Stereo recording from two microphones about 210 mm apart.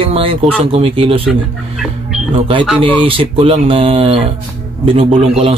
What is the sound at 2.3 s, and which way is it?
Speech, 25° right (ahead or behind).